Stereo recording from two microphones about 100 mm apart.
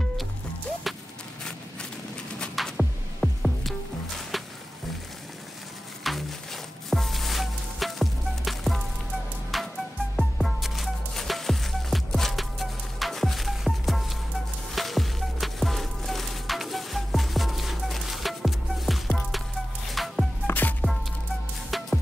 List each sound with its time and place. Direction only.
0.8 s a sound: centre (ahead or behind)
2.3 s music: 5° left (ahead or behind)
6.0 s music: centre (ahead or behind)
20.4 s music: 20° left (ahead or behind)
21.6 s music: centre (ahead or behind)